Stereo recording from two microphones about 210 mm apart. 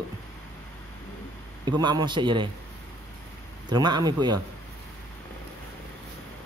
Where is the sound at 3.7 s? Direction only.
20° right (ahead or behind).